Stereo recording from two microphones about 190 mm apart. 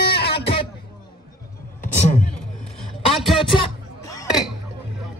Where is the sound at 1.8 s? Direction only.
40° left (ahead or behind).